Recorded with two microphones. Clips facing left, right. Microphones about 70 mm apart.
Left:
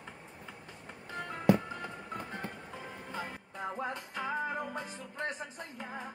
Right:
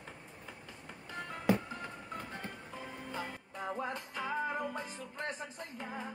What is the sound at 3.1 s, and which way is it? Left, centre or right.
Music, left.